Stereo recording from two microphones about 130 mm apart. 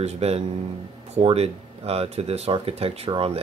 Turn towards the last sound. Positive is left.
turn(degrees=-50)  # may be behind; listen again after turning